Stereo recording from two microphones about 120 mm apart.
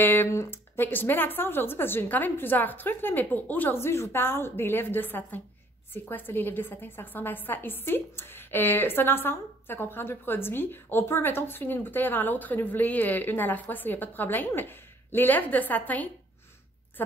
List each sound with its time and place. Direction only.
0.0 s a woman's voice: 20° left (ahead or behind)